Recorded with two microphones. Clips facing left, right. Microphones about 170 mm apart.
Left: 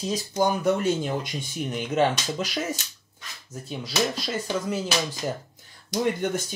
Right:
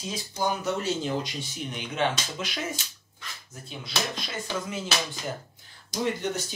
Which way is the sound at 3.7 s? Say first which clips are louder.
Left 6 dB; 40° left (ahead or behind).